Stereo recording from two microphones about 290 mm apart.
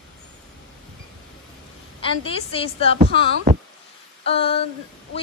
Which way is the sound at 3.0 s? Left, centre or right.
Right.